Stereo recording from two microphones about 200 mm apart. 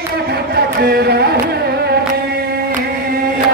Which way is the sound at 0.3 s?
50° right (ahead or behind).